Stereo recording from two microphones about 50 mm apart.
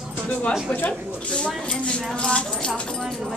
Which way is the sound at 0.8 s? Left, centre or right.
Left.